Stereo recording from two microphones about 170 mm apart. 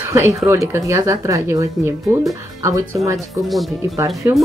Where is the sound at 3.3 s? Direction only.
Centre (ahead or behind).